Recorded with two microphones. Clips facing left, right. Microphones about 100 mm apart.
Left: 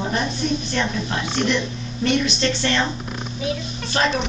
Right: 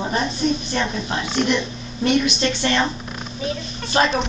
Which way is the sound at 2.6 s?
15° right (ahead or behind).